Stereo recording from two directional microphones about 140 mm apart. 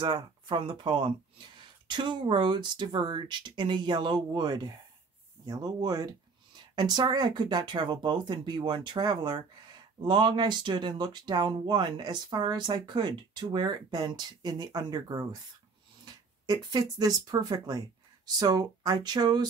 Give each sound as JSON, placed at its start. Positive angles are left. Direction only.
{"t": 0.0, "sound": "speech", "side_deg": -35}
{"t": 16.4, "sound": "speech", "side_deg": -25}